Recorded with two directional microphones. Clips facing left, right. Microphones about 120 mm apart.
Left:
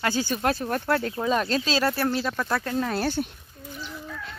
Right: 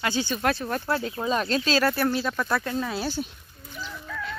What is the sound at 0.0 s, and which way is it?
Speech, 45° left (ahead or behind).